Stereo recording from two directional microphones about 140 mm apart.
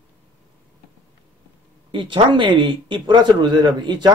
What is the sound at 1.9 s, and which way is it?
Speech, 35° right (ahead or behind).